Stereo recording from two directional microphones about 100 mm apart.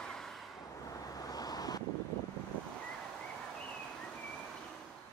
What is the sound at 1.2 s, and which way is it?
Vehicle, 40° left (ahead or behind).